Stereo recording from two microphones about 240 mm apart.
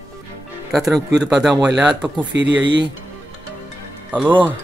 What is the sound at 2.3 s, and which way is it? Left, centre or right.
Speech, right.